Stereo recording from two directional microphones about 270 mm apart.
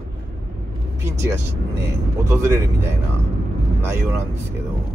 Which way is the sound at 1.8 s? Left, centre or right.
Centre.